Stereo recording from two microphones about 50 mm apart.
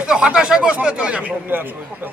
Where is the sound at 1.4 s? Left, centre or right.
Right.